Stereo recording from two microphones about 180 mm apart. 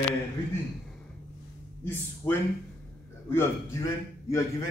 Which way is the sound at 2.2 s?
20° left (ahead or behind).